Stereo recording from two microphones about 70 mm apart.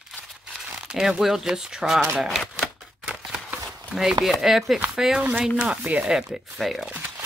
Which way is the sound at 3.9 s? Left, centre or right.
Centre.